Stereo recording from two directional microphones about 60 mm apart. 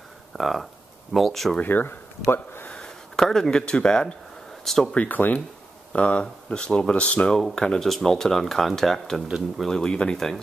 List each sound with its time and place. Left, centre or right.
0.4 s speech: centre
1.6 s speech: left
2.7 s speech: centre
4.9 s speech: left
7.3 s speech: centre